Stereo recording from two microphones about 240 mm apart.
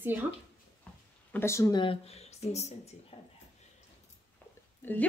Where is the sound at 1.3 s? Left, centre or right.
Centre; by 3.3 s left.